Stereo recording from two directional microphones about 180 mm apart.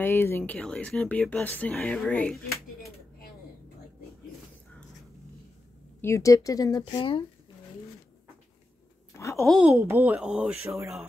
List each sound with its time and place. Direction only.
0.0 s speech: 10° left (ahead or behind)
5.9 s speech: 15° left (ahead or behind)
9.1 s a sound: 15° left (ahead or behind)
9.4 s speech: centre (ahead or behind)
9.8 s speech: 15° right (ahead or behind)